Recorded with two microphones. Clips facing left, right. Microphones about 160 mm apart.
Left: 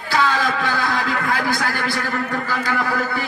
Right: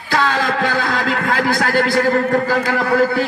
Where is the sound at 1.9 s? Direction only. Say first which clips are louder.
Right 9 dB; 45° right (ahead or behind).